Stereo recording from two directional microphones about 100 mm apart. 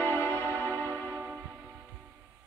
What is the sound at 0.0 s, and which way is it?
Music, 25° left (ahead or behind).